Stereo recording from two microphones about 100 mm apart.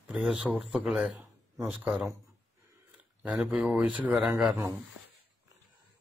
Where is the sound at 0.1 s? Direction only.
5° right (ahead or behind).